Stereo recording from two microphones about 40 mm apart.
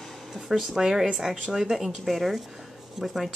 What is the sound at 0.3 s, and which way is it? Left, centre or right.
Speech, centre.